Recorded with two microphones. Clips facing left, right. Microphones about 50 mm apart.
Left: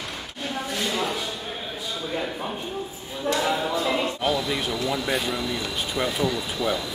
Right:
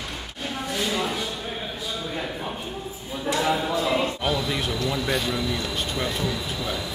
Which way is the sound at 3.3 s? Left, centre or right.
Centre.